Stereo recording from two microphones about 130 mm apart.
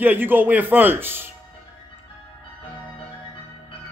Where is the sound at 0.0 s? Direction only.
15° right (ahead or behind).